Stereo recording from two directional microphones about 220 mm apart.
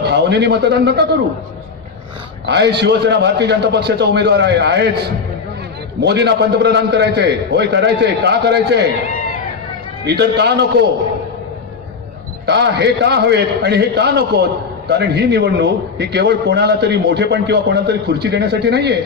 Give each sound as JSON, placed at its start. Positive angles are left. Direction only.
{"t": 0.0, "sound": "speech", "side_deg": -50}
{"t": 2.4, "sound": "a man's voice", "side_deg": -50}
{"t": 9.0, "sound": "cat", "side_deg": 40}
{"t": 10.0, "sound": "a man's voice", "side_deg": -50}
{"t": 12.4, "sound": "a man's voice", "side_deg": -50}